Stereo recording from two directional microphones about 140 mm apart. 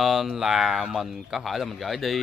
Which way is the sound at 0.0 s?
Centre (ahead or behind).